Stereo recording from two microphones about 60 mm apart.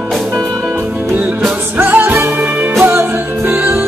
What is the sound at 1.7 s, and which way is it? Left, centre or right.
Music, right.